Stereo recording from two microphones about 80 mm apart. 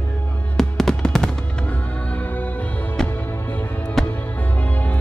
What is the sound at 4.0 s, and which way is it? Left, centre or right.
Music, centre.